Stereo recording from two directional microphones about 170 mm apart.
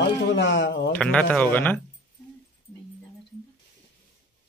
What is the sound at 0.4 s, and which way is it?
Speech, 90° left.